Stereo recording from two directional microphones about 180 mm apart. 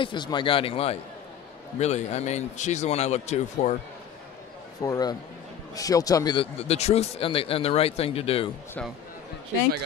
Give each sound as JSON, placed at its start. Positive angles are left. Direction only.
{"t": 0.0, "sound": "speech", "side_deg": 25}
{"t": 4.8, "sound": "speech", "side_deg": 20}